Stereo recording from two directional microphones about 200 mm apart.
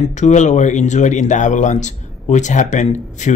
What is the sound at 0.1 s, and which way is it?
Speech, 35° left (ahead or behind).